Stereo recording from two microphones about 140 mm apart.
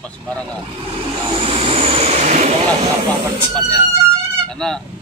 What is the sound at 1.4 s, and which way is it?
Vehicle, 45° right (ahead or behind).